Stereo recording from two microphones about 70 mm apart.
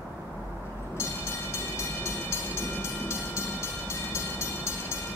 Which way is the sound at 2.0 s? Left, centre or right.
Left.